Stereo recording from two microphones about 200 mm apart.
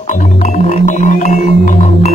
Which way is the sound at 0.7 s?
35° left (ahead or behind).